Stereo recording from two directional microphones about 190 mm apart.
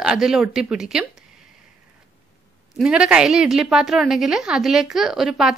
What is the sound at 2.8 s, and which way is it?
A woman's voice, 5° right (ahead or behind).